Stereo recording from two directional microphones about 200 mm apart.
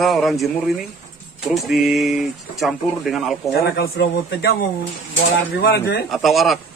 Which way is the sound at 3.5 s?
50° left (ahead or behind).